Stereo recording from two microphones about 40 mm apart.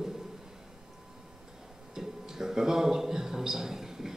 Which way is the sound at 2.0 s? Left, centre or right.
Centre.